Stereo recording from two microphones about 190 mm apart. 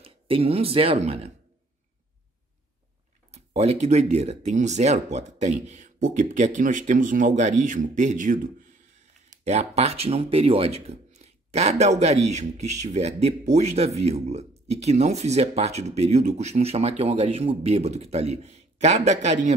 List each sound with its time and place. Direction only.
0.0 s speech: 30° right (ahead or behind)
3.5 s speech: 35° right (ahead or behind)